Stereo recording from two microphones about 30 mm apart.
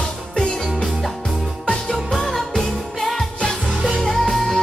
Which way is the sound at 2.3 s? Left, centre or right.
Centre.